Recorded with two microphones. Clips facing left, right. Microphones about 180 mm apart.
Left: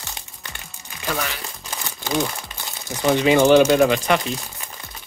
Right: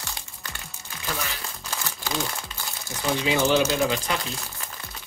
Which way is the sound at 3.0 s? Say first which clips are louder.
Left 8 dB; 65° left (ahead or behind).